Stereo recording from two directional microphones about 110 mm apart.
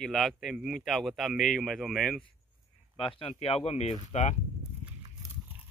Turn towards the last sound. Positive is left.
turn(degrees=90)